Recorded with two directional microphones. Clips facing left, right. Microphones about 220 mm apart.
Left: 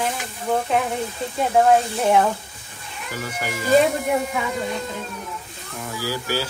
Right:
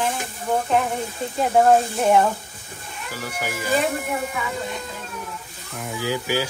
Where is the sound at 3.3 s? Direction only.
5° right (ahead or behind).